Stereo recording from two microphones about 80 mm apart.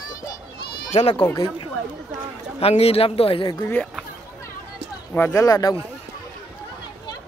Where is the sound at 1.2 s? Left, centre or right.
Left.